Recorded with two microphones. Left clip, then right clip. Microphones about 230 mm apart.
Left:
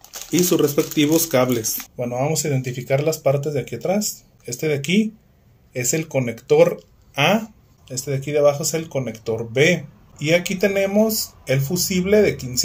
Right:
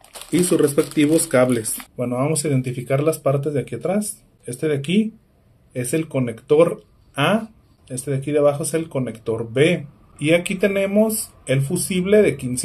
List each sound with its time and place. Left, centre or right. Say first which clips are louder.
0.3 s speech: even; centre